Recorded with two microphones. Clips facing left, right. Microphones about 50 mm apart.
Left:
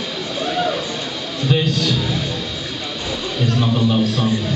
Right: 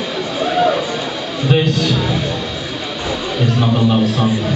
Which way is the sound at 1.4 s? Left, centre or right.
Centre.